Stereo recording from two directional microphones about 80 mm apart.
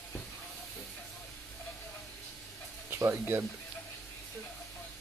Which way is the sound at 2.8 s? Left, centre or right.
Right.